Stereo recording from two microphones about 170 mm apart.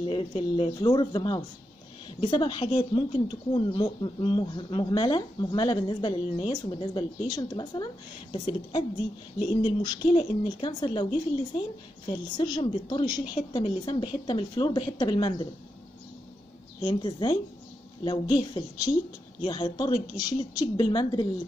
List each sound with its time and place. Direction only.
0.1 s speech: 30° left (ahead or behind)
12.1 s speech: 25° left (ahead or behind)
16.8 s speech: 25° left (ahead or behind)